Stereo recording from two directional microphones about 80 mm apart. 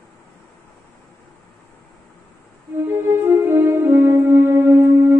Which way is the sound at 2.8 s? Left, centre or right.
Right.